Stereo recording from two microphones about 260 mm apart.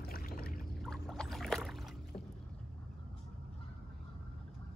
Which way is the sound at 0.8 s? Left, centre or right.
Centre.